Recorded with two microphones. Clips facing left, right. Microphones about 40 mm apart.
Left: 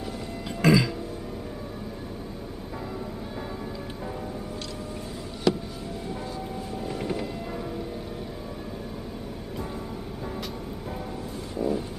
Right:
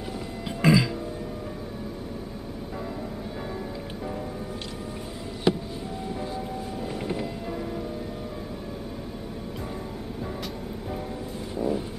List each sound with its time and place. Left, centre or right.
0.5 s throat clearing: centre
5.5 s a sound: right
6.9 s music: centre
11.5 s vehicle: centre